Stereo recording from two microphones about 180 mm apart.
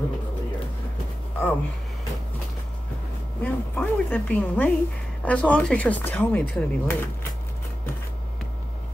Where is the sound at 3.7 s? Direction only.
10° left (ahead or behind).